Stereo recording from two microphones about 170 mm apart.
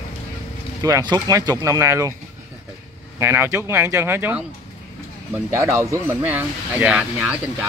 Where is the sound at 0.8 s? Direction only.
20° right (ahead or behind).